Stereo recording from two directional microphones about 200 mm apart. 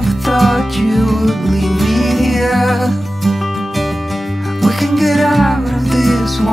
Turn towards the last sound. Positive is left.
turn(degrees=0)  # may be behind; listen again after turning